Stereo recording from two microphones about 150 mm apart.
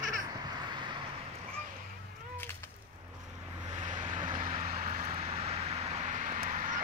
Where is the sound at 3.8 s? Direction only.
55° right (ahead or behind).